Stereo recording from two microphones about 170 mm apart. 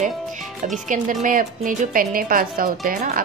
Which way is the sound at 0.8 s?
50° right (ahead or behind).